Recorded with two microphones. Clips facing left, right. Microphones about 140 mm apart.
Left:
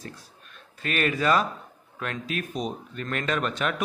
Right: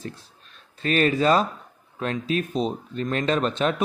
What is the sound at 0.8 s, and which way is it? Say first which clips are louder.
Speech: right 5 dB; 30° right (ahead or behind).